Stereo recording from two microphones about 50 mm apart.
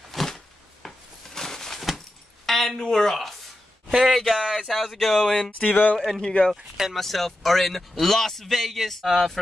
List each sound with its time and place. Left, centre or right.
0.1 s a sound: centre
3.9 s speech: centre
5.5 s speech: left
5.9 s speech: centre
6.2 s speech: centre
6.9 s speech: centre